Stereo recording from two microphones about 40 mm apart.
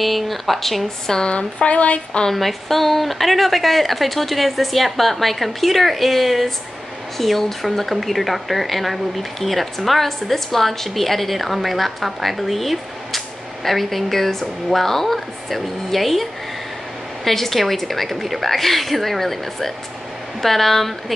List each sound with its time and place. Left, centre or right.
0.0 s a woman's voice: centre
1.1 s speech: left
2.3 s a woman's voice: centre